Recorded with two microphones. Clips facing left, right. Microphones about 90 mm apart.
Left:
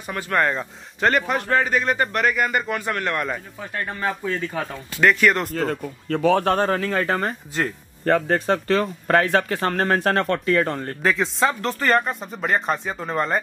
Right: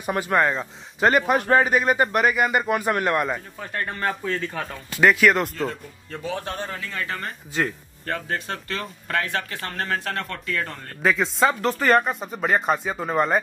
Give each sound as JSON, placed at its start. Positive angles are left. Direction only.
{"t": 0.0, "sound": "speech", "side_deg": -15}
{"t": 0.4, "sound": "speech", "side_deg": 0}
{"t": 3.7, "sound": "speech", "side_deg": 5}
{"t": 5.0, "sound": "speech", "side_deg": 0}
{"t": 5.5, "sound": "speech", "side_deg": 45}
{"t": 6.0, "sound": "speech", "side_deg": 75}
{"t": 6.8, "sound": "speech", "side_deg": 45}
{"t": 7.5, "sound": "speech", "side_deg": 0}
{"t": 8.1, "sound": "speech", "side_deg": 35}
{"t": 11.0, "sound": "speech", "side_deg": 0}